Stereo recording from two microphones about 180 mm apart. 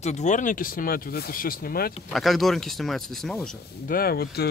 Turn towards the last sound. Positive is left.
turn(degrees=60)  # may be behind; listen again after turning